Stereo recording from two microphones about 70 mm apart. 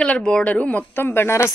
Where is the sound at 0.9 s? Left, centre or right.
Left.